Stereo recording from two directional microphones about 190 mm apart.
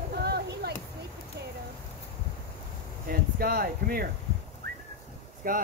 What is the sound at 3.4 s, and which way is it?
Speech, 50° right (ahead or behind).